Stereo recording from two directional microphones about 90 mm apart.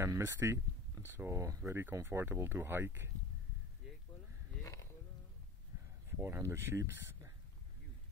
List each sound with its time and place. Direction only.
0.0 s speech: 30° right (ahead or behind)
3.8 s a sound: 5° right (ahead or behind)
6.0 s speech: 25° right (ahead or behind)